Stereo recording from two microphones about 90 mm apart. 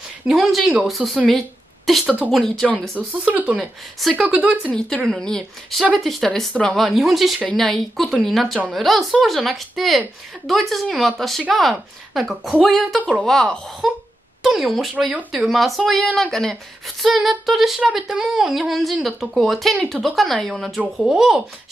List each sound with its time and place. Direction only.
0.3 s speech: centre (ahead or behind)
3.1 s speech: 15° right (ahead or behind)
4.0 s speech: centre (ahead or behind)
4.4 s speech: 15° right (ahead or behind)
4.7 s speech: 5° left (ahead or behind)
20.8 s speech: 10° right (ahead or behind)